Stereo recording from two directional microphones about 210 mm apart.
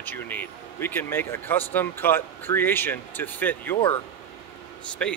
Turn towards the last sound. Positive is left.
turn(degrees=5)  # may be behind; listen again after turning